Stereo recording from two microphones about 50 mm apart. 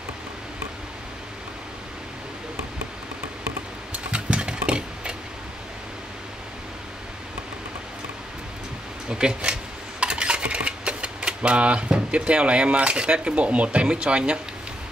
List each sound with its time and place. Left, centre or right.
3.9 s vehicle: right
9.1 s dishes: centre